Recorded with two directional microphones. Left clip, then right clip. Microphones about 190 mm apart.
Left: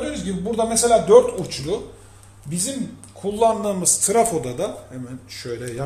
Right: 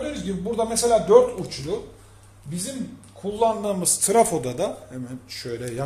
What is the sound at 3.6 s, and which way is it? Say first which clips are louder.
Speech: left 3 dB; 15° right (ahead or behind).